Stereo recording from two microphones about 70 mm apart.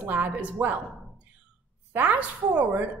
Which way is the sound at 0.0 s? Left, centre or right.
Right.